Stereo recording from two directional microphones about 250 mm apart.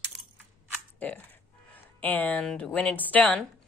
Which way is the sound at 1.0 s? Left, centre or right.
Centre.